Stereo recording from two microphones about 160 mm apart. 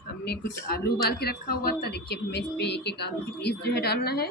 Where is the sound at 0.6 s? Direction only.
75° left (ahead or behind).